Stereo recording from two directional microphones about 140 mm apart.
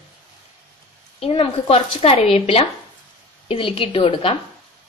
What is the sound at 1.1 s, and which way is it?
A woman's voice, 45° left (ahead or behind).